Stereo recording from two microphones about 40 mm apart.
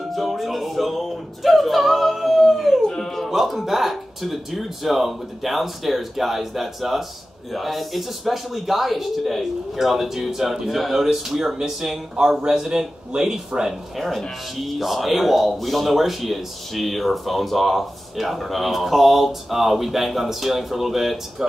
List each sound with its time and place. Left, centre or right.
0.1 s music: centre
2.9 s music: centre
3.3 s speech: centre
13.9 s speech: centre